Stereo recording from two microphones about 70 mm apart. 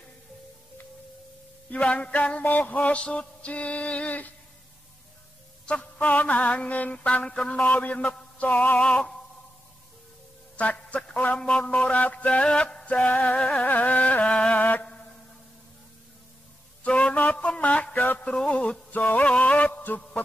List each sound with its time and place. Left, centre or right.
1.7 s music: centre
5.7 s music: centre
10.5 s a sound: left
11.5 s music: centre
13.7 s music: left
14.2 s music: centre
14.6 s music: left
16.8 s a sound: centre
17.2 s music: left
18.3 s music: centre
18.9 s music: left